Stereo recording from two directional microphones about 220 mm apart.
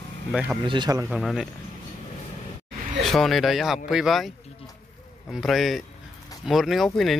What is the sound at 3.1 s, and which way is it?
Speech, centre (ahead or behind).